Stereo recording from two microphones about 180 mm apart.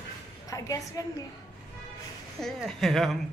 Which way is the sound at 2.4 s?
Centre (ahead or behind).